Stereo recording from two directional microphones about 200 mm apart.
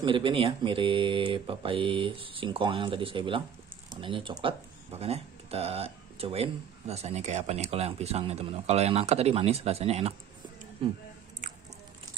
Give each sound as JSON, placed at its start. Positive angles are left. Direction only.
{"t": 0.0, "sound": "speech", "side_deg": -25}
{"t": 11.4, "sound": "biting", "side_deg": -35}